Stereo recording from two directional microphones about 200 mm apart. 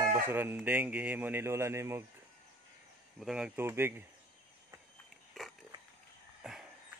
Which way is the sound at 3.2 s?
5° right (ahead or behind).